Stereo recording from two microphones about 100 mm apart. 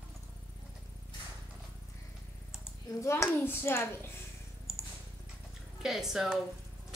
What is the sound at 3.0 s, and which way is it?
Speech, 25° left (ahead or behind).